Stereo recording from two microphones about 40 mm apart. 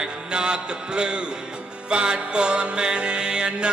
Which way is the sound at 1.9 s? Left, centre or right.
Right.